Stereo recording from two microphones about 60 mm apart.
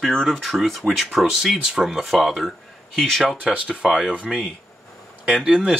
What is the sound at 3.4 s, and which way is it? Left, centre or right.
Speech, right.